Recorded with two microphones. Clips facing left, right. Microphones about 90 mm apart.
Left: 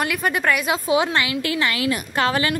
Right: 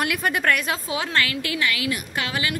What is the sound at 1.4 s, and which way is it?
A woman's voice, 30° left (ahead or behind).